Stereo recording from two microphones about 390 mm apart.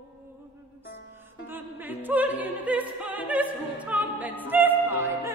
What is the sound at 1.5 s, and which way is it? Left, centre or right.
Opera, centre.